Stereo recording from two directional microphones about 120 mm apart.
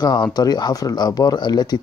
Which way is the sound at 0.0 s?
35° left (ahead or behind).